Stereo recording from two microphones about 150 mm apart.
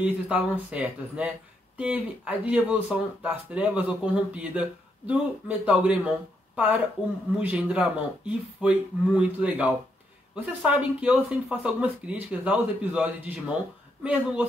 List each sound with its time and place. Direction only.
0.0 s speech: 5° right (ahead or behind)